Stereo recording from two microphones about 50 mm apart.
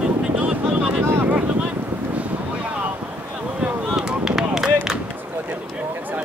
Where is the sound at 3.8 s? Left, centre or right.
Centre.